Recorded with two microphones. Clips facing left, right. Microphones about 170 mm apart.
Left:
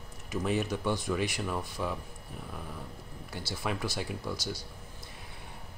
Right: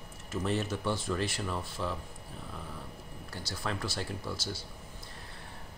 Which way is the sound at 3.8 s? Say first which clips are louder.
Left 2 dB; 20° left (ahead or behind).